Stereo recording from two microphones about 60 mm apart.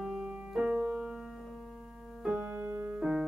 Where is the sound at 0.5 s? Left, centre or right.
Centre.